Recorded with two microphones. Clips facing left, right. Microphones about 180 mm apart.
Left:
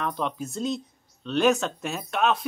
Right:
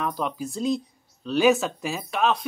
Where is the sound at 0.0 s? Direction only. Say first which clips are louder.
Right 1 dB; centre (ahead or behind).